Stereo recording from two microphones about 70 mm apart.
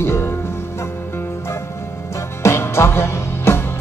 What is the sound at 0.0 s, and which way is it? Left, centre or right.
Music, left.